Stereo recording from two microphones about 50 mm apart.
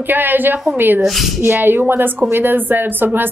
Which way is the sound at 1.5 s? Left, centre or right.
Right.